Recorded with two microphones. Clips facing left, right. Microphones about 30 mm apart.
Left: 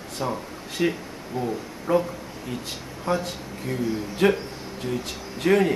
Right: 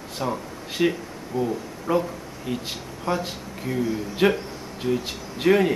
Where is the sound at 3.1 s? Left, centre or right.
Centre.